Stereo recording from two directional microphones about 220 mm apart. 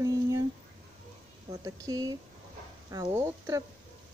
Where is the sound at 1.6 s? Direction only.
15° right (ahead or behind).